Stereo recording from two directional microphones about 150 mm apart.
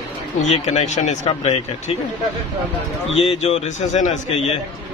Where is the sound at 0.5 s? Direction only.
45° left (ahead or behind).